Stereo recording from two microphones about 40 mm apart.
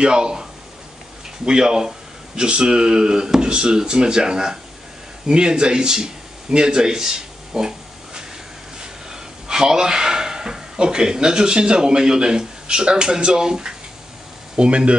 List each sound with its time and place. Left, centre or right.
0.0 s speech: right